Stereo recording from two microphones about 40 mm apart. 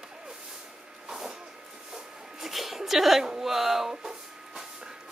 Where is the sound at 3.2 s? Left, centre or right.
Centre.